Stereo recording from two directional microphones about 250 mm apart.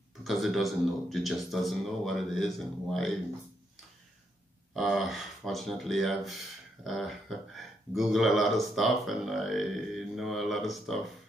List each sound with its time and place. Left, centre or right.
0.2 s speech: centre
4.7 s speech: centre